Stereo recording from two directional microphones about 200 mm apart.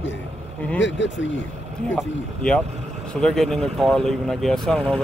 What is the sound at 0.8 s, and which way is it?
Speech, 65° left (ahead or behind).